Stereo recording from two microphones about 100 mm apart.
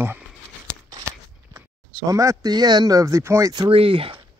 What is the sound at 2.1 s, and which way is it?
Speech, 35° right (ahead or behind).